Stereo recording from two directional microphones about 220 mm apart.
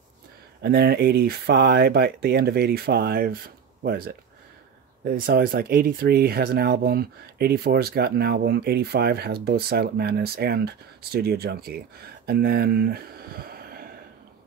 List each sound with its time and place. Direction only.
0.6 s speech: 45° right (ahead or behind)